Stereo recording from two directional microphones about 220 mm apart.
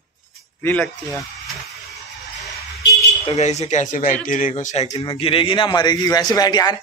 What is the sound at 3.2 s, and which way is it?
A man's voice, 30° left (ahead or behind).